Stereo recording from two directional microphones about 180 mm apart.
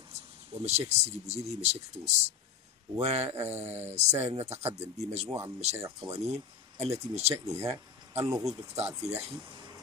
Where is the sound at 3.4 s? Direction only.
15° right (ahead or behind).